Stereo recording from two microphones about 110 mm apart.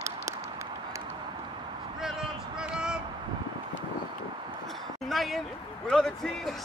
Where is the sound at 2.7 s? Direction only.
10° right (ahead or behind).